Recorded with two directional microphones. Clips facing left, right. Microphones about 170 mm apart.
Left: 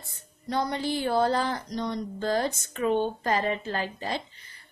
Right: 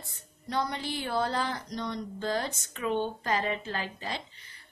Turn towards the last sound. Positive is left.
turn(degrees=45)  # may be behind; listen again after turning